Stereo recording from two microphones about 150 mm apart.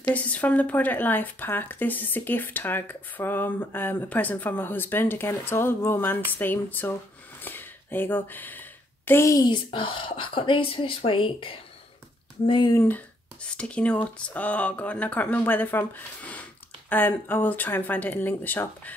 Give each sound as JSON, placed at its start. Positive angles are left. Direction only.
{"t": 0.0, "sound": "speech", "side_deg": 10}
{"t": 12.7, "sound": "speech", "side_deg": 10}